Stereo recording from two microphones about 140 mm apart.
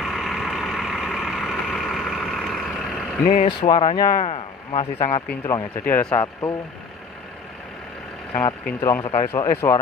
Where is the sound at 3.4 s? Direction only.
30° left (ahead or behind).